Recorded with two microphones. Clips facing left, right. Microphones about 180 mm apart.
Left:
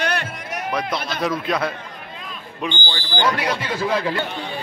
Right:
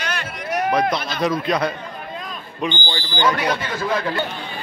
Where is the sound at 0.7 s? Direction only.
5° left (ahead or behind).